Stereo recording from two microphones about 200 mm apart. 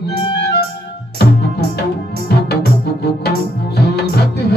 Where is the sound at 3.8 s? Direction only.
55° left (ahead or behind).